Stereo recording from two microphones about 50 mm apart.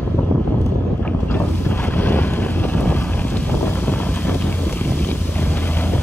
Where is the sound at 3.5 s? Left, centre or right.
Left.